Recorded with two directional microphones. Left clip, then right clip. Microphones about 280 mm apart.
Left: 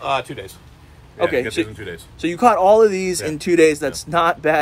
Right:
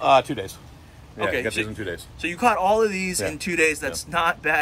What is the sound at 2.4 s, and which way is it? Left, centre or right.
Speech, centre.